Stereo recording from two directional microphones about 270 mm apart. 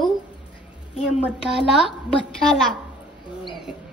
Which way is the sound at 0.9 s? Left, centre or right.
Centre.